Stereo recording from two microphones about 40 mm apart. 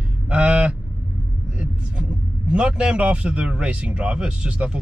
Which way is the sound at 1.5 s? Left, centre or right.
Right.